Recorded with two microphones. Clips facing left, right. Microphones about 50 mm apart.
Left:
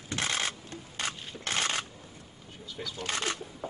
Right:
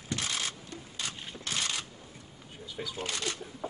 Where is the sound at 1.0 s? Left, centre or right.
Left.